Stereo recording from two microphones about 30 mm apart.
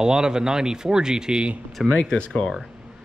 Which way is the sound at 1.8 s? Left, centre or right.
Centre.